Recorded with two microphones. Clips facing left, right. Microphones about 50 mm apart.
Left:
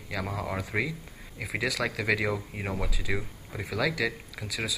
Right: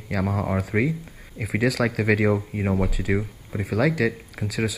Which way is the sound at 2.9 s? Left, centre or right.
Right.